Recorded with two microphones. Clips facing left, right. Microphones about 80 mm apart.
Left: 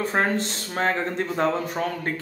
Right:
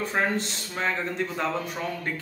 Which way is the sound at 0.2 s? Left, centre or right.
Left.